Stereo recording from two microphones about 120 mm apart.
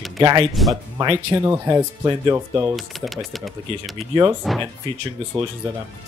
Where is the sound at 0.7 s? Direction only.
35° right (ahead or behind).